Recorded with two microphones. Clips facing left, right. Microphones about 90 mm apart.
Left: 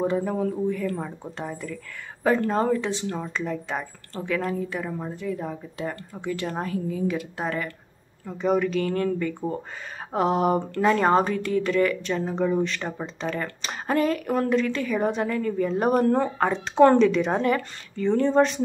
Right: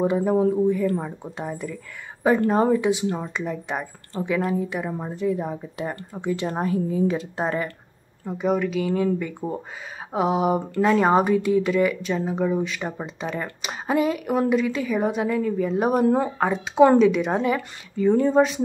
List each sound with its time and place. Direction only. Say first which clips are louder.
0.0 s speech: right 4 dB; 15° right (ahead or behind)
8.4 s speech: even; 5° right (ahead or behind)